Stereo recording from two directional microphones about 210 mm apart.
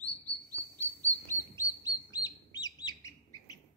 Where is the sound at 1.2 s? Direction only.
15° left (ahead or behind).